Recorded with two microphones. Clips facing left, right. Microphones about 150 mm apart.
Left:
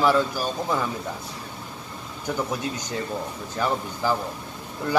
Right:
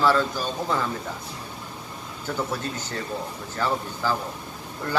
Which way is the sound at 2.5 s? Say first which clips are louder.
Left 2 dB; 15° left (ahead or behind).